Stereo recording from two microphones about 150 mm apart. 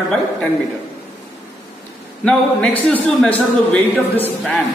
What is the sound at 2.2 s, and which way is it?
A man's voice, 5° left (ahead or behind).